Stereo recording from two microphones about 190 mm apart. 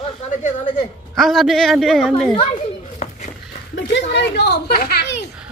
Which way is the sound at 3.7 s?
65° left (ahead or behind).